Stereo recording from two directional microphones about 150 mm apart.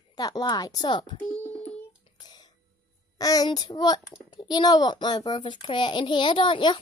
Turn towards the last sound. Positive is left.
turn(degrees=35)  # may be behind; listen again after turning